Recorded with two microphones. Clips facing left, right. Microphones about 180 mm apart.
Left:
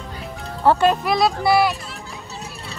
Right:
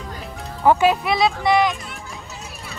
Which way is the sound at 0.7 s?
Centre (ahead or behind).